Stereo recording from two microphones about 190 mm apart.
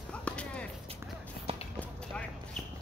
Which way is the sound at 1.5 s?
30° right (ahead or behind).